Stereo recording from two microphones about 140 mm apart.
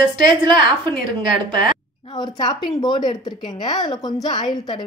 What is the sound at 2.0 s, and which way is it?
A woman's voice, 30° left (ahead or behind).